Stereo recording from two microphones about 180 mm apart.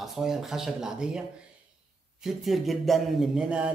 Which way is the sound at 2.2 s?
Centre (ahead or behind).